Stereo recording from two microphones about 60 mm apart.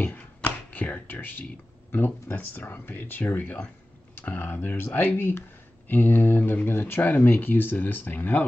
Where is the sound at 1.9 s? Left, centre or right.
Left.